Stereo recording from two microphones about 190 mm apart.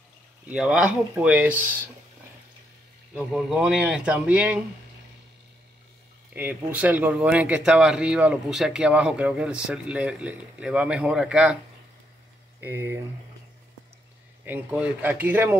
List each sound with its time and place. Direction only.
0.5 s speech: 5° right (ahead or behind)
3.3 s speech: 5° right (ahead or behind)
6.3 s speech: 10° right (ahead or behind)
12.5 s speech: 10° right (ahead or behind)
14.4 s speech: 10° right (ahead or behind)